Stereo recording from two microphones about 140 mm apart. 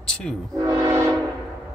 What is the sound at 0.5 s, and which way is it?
Train, 20° right (ahead or behind).